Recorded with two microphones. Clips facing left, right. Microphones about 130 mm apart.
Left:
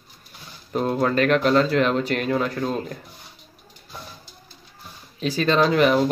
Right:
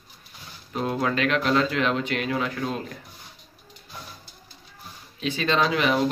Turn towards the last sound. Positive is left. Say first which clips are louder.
# left 5 dB
turn(degrees=40)  # may be behind; listen again after turning